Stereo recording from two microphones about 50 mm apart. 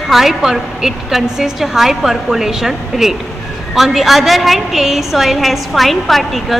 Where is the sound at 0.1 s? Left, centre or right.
Centre.